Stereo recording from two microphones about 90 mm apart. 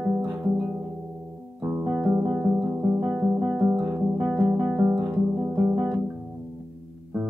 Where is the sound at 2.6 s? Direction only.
20° right (ahead or behind).